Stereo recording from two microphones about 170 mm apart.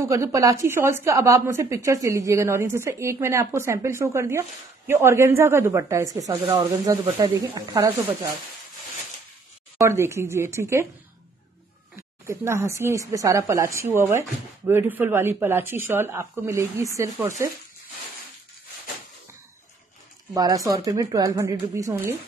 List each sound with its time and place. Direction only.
0.0 s a woman's voice: 15° right (ahead or behind)
9.8 s a woman's voice: 15° right (ahead or behind)
12.3 s a woman's voice: 15° right (ahead or behind)
20.3 s speech: 20° right (ahead or behind)